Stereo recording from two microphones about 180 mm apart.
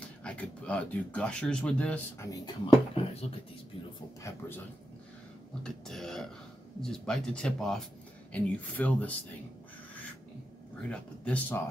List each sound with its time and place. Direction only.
0.2 s speech: 5° left (ahead or behind)
2.3 s speech: 25° left (ahead or behind)
5.6 s speech: 5° left (ahead or behind)
10.9 s speech: 5° left (ahead or behind)